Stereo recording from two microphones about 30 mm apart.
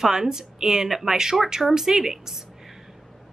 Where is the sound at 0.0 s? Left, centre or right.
Centre.